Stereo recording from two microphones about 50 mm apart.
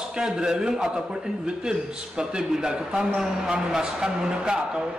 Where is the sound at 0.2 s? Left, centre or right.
Centre.